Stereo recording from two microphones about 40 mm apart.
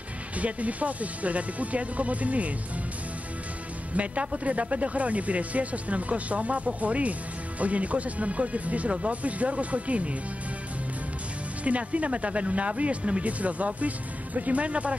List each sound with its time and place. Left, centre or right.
0.4 s speech: right
3.9 s speech: right
11.6 s speech: right